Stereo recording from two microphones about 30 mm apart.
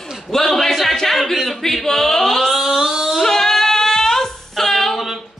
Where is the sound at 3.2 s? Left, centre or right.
Centre.